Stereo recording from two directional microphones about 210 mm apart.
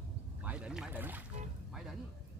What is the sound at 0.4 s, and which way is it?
Boat, 5° right (ahead or behind).